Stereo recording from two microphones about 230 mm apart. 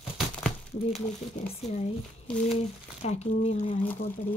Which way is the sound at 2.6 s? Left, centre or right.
Left.